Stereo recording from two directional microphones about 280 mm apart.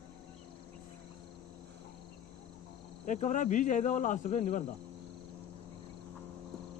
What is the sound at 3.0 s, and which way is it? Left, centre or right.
Speech, left.